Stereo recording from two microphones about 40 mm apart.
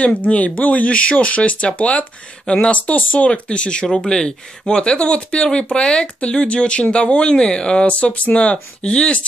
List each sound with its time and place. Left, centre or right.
0.0 s speech: left
2.9 s speech: left
3.3 s speech: left
3.8 s speech: centre
7.9 s speech: left